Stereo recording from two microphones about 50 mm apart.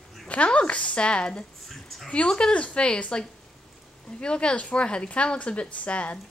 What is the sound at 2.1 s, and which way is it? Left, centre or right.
Speech, centre.